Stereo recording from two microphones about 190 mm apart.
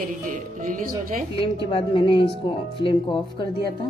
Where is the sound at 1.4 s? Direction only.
25° left (ahead or behind).